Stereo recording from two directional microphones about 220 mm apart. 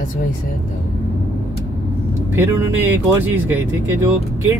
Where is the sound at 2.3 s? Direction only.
10° right (ahead or behind).